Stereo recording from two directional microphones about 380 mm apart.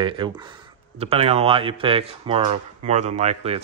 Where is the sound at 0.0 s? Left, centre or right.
Centre.